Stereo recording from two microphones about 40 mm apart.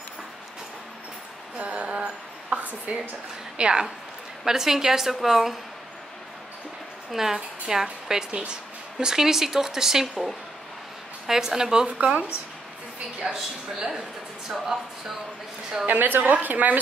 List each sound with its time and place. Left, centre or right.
1.6 s a sound: right
3.5 s a woman's voice: right
4.5 s speech: centre
7.1 s a woman's voice: centre
8.3 s a woman's voice: right
9.0 s speech: centre
11.2 s speech: centre
13.2 s a woman's voice: centre
15.9 s a woman's voice: right